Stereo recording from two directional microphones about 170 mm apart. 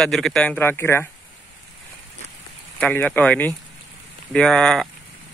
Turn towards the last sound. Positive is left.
turn(degrees=5)  # may be behind; listen again after turning